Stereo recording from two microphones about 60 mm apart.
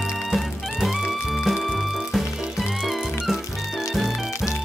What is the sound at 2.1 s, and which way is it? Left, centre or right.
Music, centre.